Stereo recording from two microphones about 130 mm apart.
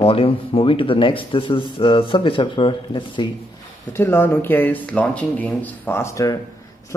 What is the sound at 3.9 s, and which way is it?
Speech, 15° left (ahead or behind).